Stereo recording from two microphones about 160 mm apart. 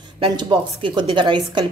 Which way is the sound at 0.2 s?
30° right (ahead or behind).